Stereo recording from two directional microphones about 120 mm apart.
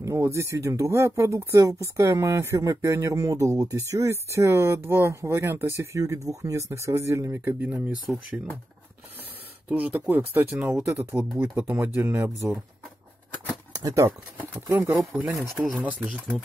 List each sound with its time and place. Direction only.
0.0 s speech: 25° right (ahead or behind)
9.7 s speech: 15° right (ahead or behind)
13.7 s speech: 30° right (ahead or behind)
15.1 s speech: 5° right (ahead or behind)